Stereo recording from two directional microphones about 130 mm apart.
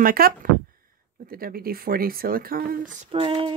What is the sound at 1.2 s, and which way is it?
Speech, 90° right.